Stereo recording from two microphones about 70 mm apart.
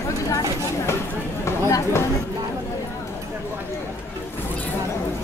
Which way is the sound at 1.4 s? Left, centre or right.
Left.